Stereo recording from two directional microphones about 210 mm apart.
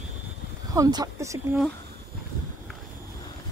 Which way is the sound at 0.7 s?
15° right (ahead or behind).